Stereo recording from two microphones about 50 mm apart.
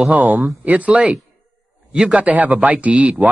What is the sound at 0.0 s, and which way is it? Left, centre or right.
Speech, right.